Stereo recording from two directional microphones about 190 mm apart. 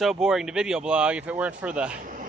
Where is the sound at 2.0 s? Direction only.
45° right (ahead or behind).